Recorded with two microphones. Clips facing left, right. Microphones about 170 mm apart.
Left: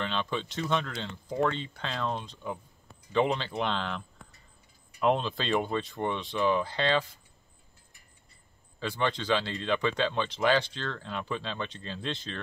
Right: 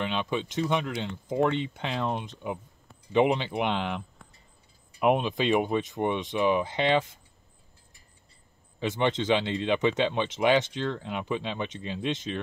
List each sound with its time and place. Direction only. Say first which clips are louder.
0.0 s speech: right 3 dB; 15° right (ahead or behind)
5.0 s speech: right 3 dB; 15° right (ahead or behind)
8.7 s speech: right 4 dB; 20° right (ahead or behind)